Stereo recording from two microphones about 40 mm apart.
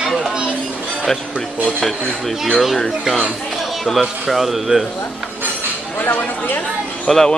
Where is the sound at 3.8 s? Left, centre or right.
Centre.